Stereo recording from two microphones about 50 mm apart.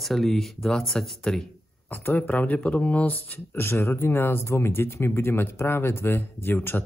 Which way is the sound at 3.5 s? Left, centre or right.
Left.